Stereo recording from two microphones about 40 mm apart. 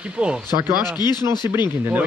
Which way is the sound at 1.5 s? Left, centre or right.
Right.